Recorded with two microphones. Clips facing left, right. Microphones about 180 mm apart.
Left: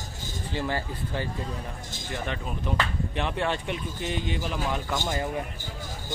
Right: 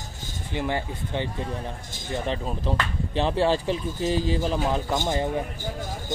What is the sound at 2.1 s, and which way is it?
Speech, 30° right (ahead or behind).